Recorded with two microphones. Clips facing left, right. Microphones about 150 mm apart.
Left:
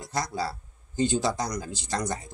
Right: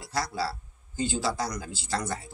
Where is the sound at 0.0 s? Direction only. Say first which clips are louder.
Left 1 dB; 20° left (ahead or behind).